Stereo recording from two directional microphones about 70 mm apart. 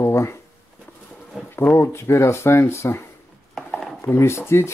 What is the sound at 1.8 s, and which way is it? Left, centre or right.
Speech, left.